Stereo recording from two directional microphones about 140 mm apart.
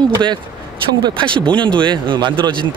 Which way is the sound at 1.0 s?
35° right (ahead or behind).